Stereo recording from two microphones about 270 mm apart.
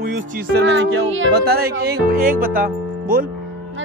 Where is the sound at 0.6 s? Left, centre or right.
Right.